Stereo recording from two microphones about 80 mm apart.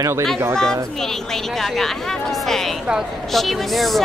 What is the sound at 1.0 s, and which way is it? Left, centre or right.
A woman's voice, centre.